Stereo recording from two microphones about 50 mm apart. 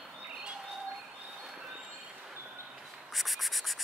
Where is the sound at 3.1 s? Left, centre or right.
Centre.